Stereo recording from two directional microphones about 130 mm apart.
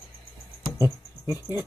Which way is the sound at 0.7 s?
15° right (ahead or behind).